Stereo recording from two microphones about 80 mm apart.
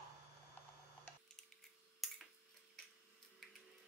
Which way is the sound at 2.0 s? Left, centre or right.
Centre.